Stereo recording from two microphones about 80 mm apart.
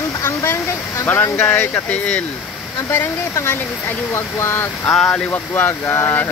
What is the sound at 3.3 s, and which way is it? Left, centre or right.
Speech, left.